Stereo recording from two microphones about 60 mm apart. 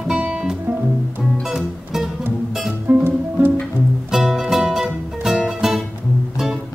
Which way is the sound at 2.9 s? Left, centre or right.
Right.